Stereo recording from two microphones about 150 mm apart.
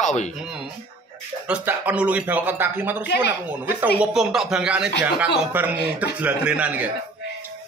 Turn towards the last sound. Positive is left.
turn(degrees=-10)  # may be behind; listen again after turning